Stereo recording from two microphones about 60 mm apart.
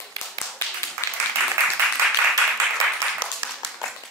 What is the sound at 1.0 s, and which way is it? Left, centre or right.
Applause, left.